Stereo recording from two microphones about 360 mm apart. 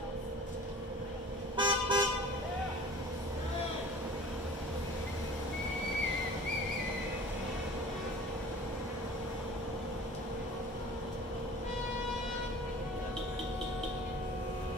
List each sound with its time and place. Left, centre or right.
1.6 s toot: centre